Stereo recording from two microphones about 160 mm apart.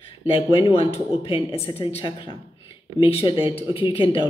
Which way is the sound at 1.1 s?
35° left (ahead or behind).